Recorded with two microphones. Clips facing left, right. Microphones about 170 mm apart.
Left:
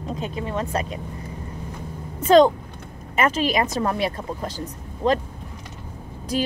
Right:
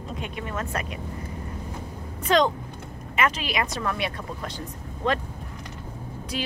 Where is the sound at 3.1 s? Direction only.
45° left (ahead or behind).